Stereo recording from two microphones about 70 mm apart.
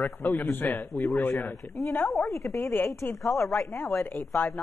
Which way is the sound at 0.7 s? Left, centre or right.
Centre.